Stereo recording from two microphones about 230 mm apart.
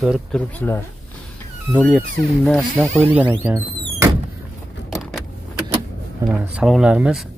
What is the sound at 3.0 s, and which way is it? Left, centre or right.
Speech, centre.